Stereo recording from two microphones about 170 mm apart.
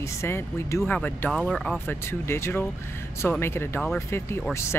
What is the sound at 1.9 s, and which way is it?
Speech, 15° left (ahead or behind).